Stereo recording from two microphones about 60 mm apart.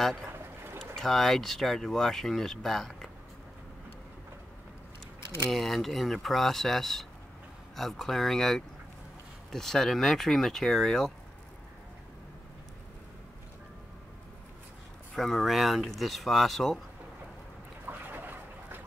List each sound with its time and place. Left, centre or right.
0.7 s speech: centre
5.5 s speech: centre
15.1 s speech: centre
17.8 s a sound: right